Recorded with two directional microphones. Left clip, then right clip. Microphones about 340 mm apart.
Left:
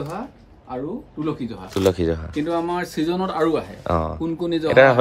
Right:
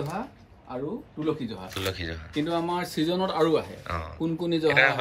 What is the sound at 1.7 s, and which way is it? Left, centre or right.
Speech, centre.